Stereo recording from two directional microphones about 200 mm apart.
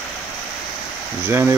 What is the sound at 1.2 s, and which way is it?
Speech, 10° right (ahead or behind).